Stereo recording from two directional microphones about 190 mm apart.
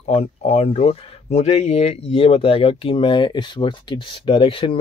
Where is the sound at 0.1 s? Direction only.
35° left (ahead or behind).